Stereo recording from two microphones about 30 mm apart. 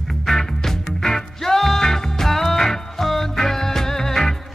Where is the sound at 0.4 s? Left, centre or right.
Centre.